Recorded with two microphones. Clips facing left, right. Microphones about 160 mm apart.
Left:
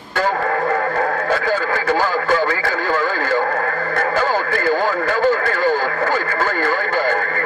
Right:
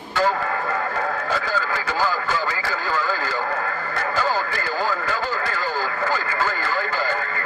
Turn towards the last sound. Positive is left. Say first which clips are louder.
# left 6 dB
turn(degrees=55)  # may be behind; listen again after turning